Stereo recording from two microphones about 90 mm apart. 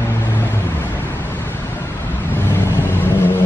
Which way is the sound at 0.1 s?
25° left (ahead or behind).